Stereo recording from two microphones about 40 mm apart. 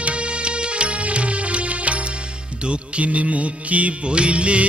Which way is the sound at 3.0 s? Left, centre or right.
Right.